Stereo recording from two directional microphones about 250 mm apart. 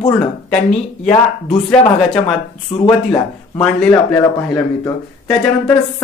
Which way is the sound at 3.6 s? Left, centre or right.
Centre.